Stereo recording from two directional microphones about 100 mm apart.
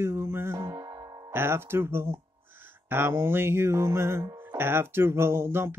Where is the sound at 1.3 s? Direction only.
25° right (ahead or behind).